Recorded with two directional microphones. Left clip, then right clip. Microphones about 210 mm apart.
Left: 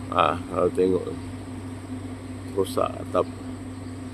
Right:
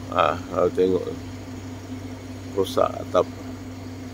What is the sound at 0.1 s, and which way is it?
Speech, 10° left (ahead or behind).